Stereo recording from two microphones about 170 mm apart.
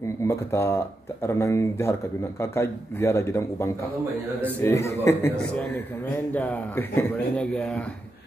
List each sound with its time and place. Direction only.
0.3 s speech: 15° left (ahead or behind)
6.3 s speech: 10° left (ahead or behind)